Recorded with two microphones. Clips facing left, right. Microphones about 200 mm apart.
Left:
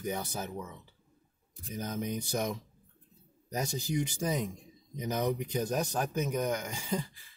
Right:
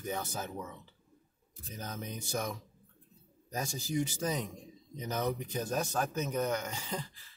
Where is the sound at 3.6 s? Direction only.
15° left (ahead or behind).